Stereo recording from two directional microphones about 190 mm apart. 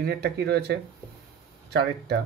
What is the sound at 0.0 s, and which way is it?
Speech, 60° right (ahead or behind).